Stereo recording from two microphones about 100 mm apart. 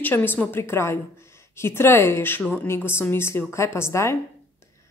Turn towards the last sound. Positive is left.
turn(degrees=25)  # may be behind; listen again after turning